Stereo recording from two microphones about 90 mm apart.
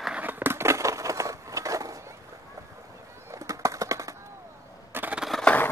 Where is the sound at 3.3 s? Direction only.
35° right (ahead or behind).